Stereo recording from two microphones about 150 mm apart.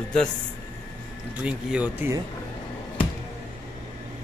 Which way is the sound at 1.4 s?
5° right (ahead or behind).